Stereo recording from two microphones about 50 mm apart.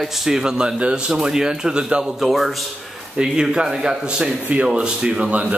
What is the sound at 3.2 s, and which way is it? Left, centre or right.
Speech, centre.